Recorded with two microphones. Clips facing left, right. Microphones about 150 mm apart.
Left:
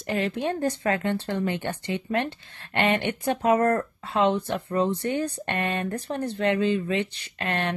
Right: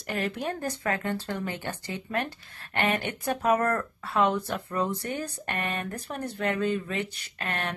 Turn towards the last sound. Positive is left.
turn(degrees=30)  # may be behind; listen again after turning